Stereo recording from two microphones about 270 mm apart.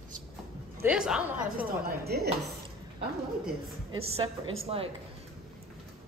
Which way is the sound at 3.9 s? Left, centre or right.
Right.